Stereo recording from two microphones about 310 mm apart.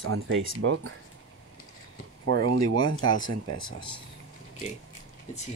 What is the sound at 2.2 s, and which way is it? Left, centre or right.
Speech, right.